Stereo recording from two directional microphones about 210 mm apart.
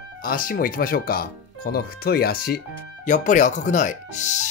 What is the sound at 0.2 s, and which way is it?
Speech, 45° left (ahead or behind).